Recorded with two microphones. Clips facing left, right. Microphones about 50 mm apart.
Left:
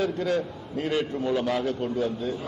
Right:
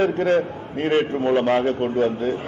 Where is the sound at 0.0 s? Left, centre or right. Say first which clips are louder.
Right 7 dB; right.